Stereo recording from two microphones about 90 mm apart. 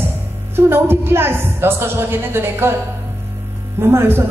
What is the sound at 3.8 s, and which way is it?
Speech, 25° right (ahead or behind).